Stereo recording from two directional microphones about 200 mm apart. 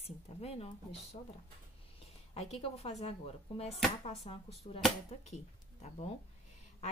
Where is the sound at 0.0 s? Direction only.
30° left (ahead or behind).